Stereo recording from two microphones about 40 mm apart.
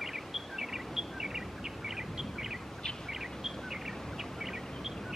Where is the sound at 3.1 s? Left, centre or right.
Centre.